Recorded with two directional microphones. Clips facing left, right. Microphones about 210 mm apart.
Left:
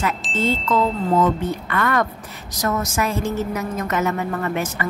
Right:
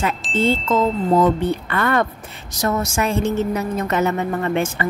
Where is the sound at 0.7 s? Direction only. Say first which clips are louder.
Right 2 dB; 40° right (ahead or behind).